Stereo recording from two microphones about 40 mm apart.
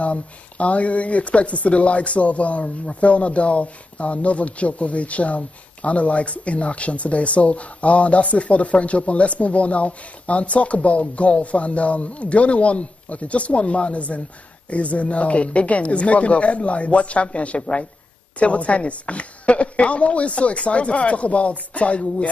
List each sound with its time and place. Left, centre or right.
0.0 s speech: left